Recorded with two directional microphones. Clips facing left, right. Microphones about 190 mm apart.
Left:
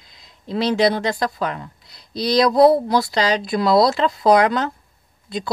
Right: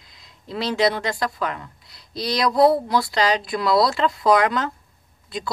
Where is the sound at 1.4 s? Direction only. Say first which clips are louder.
Left 2 dB; 30° left (ahead or behind).